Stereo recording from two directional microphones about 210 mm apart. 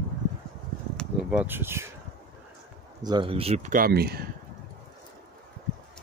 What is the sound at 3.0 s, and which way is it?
Speech, 20° right (ahead or behind).